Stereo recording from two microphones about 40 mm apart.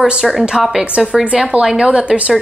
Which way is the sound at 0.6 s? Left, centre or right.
Centre.